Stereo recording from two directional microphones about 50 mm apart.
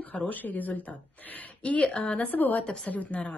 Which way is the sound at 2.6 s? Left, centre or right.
Centre.